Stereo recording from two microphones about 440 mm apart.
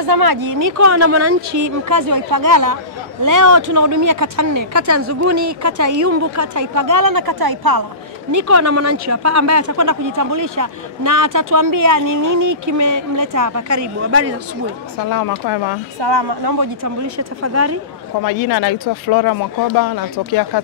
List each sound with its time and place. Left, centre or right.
0.0 s speech: right
8.3 s speech: right
15.0 s speech: left
16.0 s speech: right
17.0 s speech: right
18.2 s speech: left